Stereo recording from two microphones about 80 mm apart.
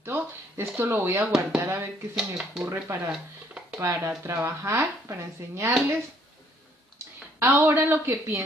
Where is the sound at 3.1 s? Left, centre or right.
Centre.